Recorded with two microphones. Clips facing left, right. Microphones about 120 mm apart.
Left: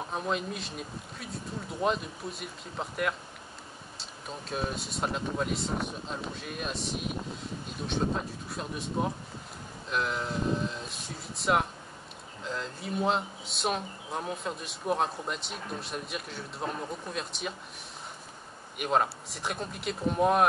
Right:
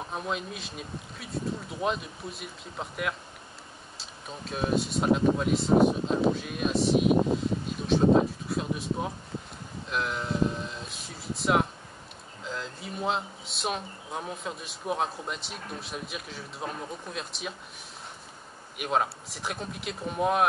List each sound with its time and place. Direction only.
0.1 s speech: centre (ahead or behind)
7.0 s speech: 55° right (ahead or behind)
7.3 s speech: centre (ahead or behind)
18.8 s speech: centre (ahead or behind)